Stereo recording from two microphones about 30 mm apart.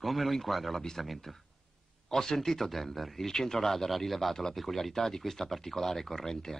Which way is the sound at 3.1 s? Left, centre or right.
Centre.